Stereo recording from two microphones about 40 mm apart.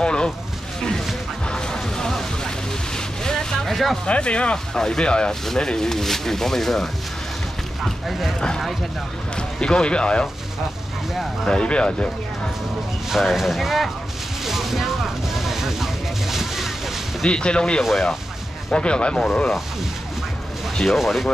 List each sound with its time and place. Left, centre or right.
0.0 s speech: left
1.5 s music: centre
3.3 s vehicle: centre
4.0 s speech: left
4.7 s speech: centre
8.1 s speech: centre
9.6 s speech: left
11.4 s speech: left
13.1 s speech: centre
14.4 s boat: centre
15.3 s a sound: centre
17.3 s speech: left
20.7 s speech: centre
21.0 s speech: centre